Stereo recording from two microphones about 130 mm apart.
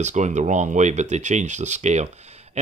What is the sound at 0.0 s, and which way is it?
Speech, 65° right (ahead or behind).